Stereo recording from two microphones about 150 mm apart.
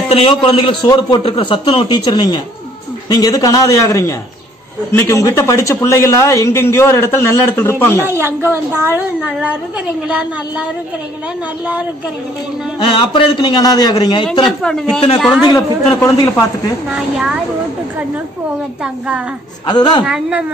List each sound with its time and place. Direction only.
0.1 s a man's voice: 35° left (ahead or behind)
1.2 s a man's voice: 35° left (ahead or behind); by 8.1 s 15° left (ahead or behind)
8.1 s a woman's voice: 15° right (ahead or behind)
12.7 s a man's voice: 30° left (ahead or behind)
14.4 s a man's voice: 5° left (ahead or behind)
15.5 s a man's voice: 20° left (ahead or behind)
16.9 s a man's voice: 5° right (ahead or behind)
19.6 s a man's voice: 30° left (ahead or behind)
20.1 s a woman's voice: 10° right (ahead or behind)